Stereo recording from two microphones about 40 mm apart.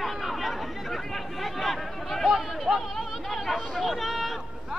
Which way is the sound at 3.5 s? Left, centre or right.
Centre.